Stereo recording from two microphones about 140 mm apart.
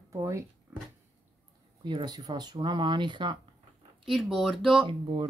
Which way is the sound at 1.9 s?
30° right (ahead or behind).